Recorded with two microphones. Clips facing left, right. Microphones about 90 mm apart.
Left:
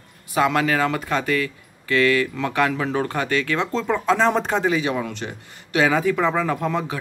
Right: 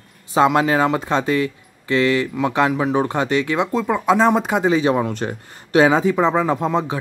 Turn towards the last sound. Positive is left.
turn(degrees=-25)  # may be behind; listen again after turning